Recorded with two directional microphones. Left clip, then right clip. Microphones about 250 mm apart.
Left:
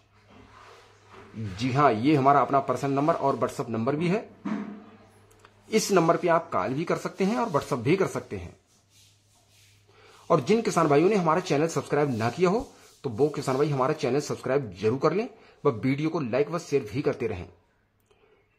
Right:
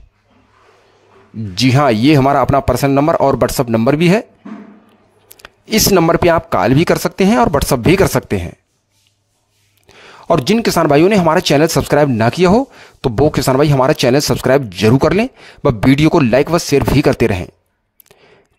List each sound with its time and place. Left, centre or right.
1.6 s speech: right
5.4 s speech: right
10.2 s speech: right